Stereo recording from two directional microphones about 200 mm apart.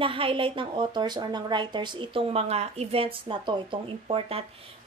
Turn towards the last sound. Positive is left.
turn(degrees=-30)  # may be behind; listen again after turning